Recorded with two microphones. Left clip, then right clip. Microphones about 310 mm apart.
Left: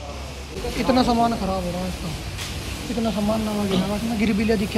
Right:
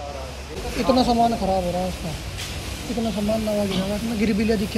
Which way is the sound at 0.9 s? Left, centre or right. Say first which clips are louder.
Even; centre.